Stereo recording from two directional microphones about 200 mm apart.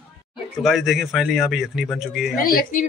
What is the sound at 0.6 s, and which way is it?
A man's voice, centre (ahead or behind).